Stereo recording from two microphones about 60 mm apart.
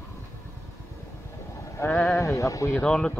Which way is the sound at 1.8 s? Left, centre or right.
Left.